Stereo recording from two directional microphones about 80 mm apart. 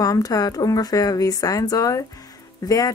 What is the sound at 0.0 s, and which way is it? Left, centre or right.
Speech, left.